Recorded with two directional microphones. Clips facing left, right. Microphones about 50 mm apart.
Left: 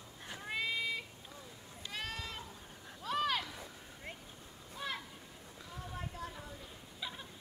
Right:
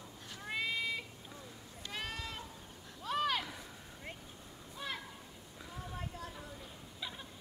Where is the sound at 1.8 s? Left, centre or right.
Centre.